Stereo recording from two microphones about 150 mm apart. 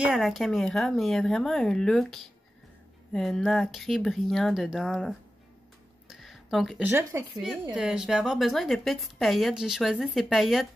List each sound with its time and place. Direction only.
0.0 s a woman's voice: centre (ahead or behind)
6.0 s a sound: centre (ahead or behind)
6.8 s speech: 15° right (ahead or behind)
7.7 s a woman's voice: 5° right (ahead or behind)